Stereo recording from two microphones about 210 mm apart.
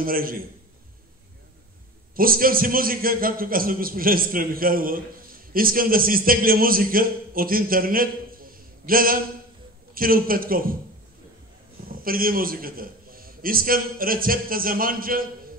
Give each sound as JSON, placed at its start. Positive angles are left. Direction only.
{"t": 0.0, "sound": "a man's voice", "side_deg": -45}
{"t": 2.1, "sound": "a man's voice", "side_deg": -45}
{"t": 11.9, "sound": "a man's voice", "side_deg": -45}